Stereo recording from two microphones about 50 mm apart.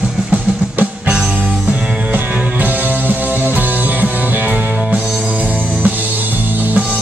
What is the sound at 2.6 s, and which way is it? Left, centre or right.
Music, right.